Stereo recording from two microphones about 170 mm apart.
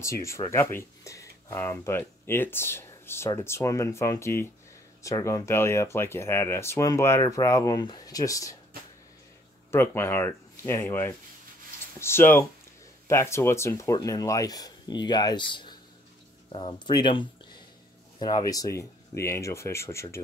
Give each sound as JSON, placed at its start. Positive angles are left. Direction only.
{"t": 0.0, "sound": "speech", "side_deg": 15}
{"t": 9.7, "sound": "speech", "side_deg": 15}